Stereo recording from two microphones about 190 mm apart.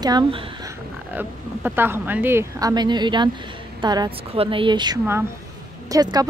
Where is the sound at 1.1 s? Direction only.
10° right (ahead or behind).